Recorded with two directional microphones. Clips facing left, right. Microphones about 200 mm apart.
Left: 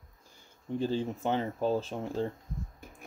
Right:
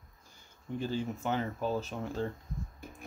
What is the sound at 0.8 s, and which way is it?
Speech, 30° left (ahead or behind).